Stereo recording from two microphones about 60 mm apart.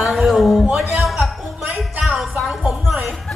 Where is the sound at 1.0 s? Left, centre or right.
Centre.